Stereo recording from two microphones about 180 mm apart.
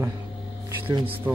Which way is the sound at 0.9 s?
30° right (ahead or behind).